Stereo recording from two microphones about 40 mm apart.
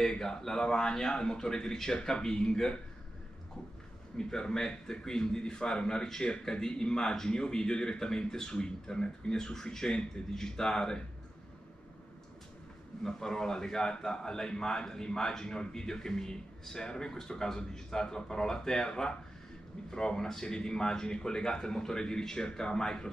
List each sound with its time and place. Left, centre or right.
0.2 s a man's voice: centre
4.2 s a man's voice: centre
13.0 s a man's voice: centre